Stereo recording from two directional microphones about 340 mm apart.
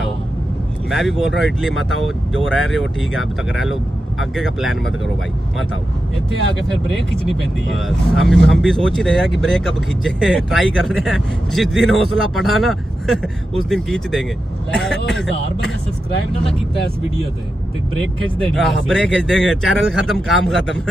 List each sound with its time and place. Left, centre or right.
0.8 s speech: centre
7.7 s speech: centre
18.5 s speech: centre